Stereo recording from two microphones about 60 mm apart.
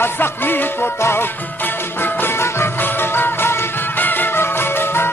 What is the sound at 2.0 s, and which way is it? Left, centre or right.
Music, left.